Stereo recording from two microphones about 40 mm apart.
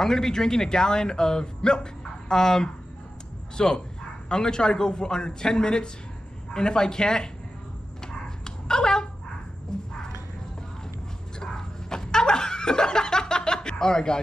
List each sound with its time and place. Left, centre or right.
0.0 s speech: centre
8.0 s dog: centre
9.7 s a sound: centre
11.3 s snicker: centre